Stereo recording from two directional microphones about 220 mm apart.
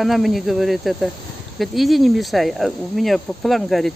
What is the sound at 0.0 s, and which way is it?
Speech, centre (ahead or behind).